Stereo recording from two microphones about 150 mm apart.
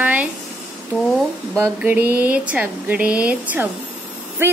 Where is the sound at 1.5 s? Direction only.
10° right (ahead or behind).